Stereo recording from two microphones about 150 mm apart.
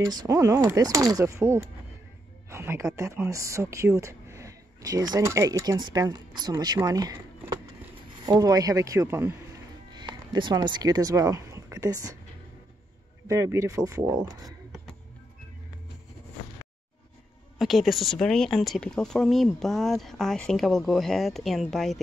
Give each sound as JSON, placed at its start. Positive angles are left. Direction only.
{"t": 0.0, "sound": "speech", "side_deg": -25}
{"t": 9.9, "sound": "speech", "side_deg": -30}
{"t": 13.3, "sound": "speech", "side_deg": -20}
{"t": 17.6, "sound": "a woman's voice", "side_deg": 0}